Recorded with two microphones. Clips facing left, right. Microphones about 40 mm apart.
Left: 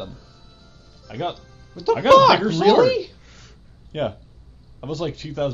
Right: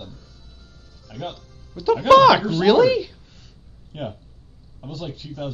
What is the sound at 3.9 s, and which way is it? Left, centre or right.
A man's voice, left.